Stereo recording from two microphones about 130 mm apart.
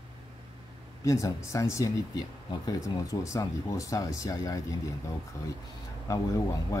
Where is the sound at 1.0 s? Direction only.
25° left (ahead or behind).